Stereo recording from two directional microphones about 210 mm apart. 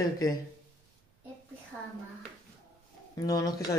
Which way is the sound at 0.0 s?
15° left (ahead or behind).